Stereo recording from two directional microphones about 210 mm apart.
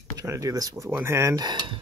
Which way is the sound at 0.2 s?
15° right (ahead or behind).